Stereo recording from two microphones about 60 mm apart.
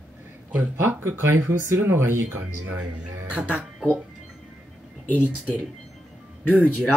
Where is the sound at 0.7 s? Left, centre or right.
Right.